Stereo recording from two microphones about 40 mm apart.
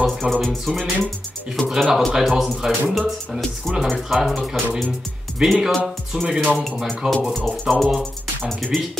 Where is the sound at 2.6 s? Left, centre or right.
Centre.